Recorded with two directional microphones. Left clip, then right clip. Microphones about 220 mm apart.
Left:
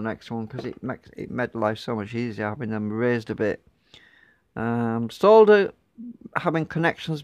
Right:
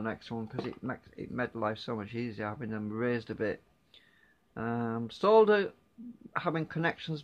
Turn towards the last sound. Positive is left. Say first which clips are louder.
# left 8 dB
turn(degrees=45)  # may be behind; listen again after turning